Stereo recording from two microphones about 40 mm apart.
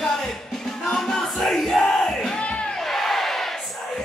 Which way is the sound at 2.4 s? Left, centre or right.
Left.